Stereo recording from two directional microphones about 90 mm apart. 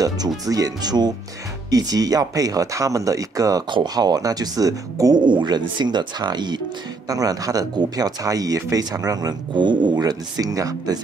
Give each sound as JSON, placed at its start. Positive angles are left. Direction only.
{"t": 0.0, "sound": "speech", "side_deg": -40}
{"t": 3.6, "sound": "speech", "side_deg": -55}
{"t": 7.1, "sound": "speech", "side_deg": -40}
{"t": 9.5, "sound": "speech", "side_deg": -60}